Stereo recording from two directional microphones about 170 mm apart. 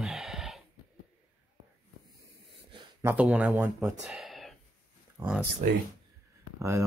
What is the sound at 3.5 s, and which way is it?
Speech, 15° right (ahead or behind).